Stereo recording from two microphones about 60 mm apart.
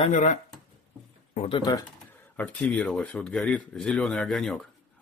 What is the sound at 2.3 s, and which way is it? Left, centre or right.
Speech, left.